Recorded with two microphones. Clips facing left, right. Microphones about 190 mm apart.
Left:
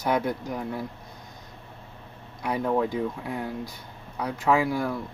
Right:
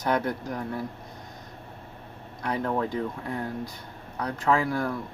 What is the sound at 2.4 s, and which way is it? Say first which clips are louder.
Speech: left 2 dB; 10° left (ahead or behind).